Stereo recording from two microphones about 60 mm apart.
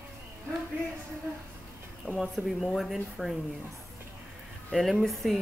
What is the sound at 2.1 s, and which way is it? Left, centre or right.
Speech, centre.